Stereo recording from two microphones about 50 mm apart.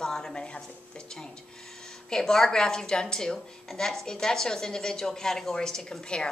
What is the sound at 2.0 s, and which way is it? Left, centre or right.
A woman's voice, centre.